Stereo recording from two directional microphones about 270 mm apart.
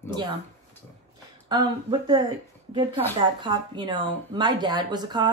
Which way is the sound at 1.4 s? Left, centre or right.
Centre.